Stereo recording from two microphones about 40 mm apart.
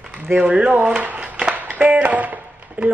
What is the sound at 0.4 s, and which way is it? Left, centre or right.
Speech, right.